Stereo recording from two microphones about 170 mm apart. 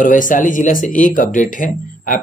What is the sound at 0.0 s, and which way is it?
Speech, 50° left (ahead or behind).